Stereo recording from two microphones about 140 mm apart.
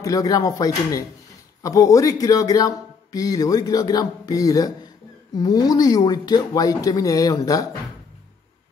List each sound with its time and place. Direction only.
0.0 s speech: 25° left (ahead or behind)